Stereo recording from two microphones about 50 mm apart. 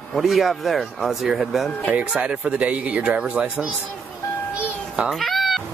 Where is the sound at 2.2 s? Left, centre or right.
Right.